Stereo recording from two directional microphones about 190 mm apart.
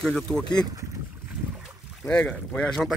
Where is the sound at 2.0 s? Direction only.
5° left (ahead or behind).